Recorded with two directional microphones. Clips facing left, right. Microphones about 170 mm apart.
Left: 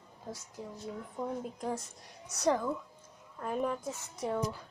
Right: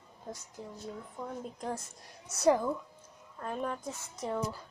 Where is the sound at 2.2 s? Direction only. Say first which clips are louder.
Right 3 dB; 5° right (ahead or behind).